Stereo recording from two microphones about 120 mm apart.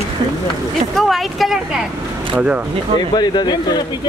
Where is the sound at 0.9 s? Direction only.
Centre (ahead or behind).